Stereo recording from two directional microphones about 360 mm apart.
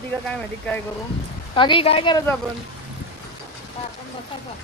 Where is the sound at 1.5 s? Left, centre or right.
Centre.